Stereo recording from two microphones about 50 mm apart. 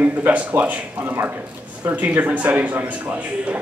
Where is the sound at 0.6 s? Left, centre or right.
Right.